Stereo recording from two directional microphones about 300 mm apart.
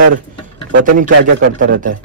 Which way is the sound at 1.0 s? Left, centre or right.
Right.